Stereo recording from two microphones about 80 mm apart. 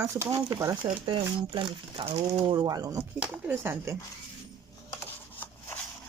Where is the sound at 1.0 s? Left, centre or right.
Right.